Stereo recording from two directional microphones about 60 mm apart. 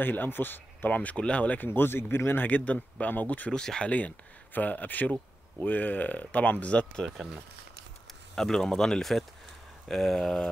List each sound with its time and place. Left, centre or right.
0.0 s speech: left
1.7 s speech: left
3.5 s speech: centre
4.6 s speech: left
8.4 s speech: centre